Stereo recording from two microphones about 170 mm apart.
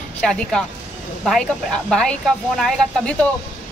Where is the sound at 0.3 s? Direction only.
5° left (ahead or behind).